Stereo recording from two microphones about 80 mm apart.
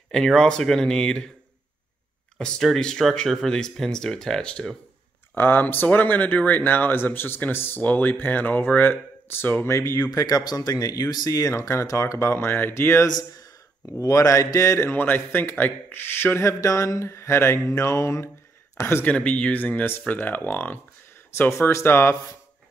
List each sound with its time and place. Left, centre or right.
0.1 s speech: centre
2.3 s speech: centre
5.3 s speech: left
10.1 s speech: left
14.9 s speech: left
19.0 s speech: centre
21.4 s speech: left